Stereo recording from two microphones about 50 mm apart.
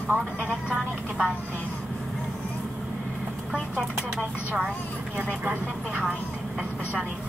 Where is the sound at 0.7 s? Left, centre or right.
Centre.